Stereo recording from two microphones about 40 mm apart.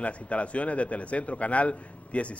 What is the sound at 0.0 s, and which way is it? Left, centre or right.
A man's voice, left.